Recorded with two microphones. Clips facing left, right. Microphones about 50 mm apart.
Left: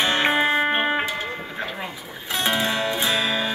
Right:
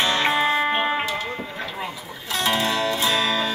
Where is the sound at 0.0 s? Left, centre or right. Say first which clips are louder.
Even; left.